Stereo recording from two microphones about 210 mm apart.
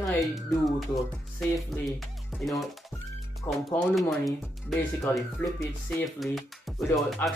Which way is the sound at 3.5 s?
10° left (ahead or behind).